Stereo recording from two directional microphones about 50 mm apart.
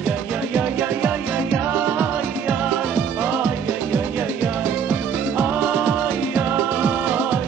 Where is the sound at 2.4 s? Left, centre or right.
Right.